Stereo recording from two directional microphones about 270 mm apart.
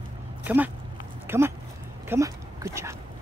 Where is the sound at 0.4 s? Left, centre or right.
Centre.